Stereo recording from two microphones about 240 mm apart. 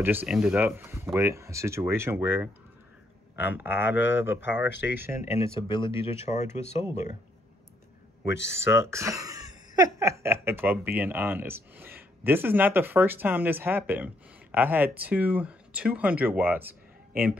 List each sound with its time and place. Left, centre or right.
0.0 s speech: centre
5.3 s speech: left
8.3 s speech: left
8.7 s speech: centre